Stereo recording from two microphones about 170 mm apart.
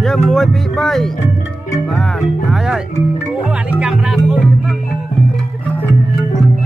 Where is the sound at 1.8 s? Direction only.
Centre (ahead or behind).